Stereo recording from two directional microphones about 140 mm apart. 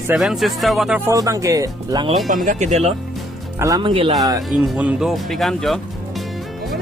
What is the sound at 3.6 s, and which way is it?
Speech, 25° right (ahead or behind).